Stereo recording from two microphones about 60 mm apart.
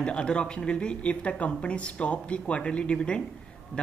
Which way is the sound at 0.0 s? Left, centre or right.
Centre.